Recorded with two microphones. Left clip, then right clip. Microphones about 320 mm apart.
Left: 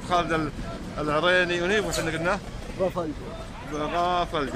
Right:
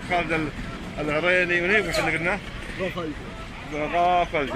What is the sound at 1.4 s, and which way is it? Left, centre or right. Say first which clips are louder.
Speech: right 3 dB; left.